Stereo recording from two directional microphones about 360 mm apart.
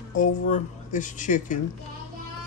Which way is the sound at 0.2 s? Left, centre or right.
Left.